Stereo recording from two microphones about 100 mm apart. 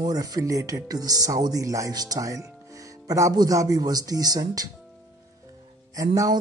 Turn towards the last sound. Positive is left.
turn(degrees=-35)  # may be behind; listen again after turning